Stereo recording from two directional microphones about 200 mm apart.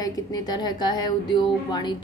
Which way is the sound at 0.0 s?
20° left (ahead or behind).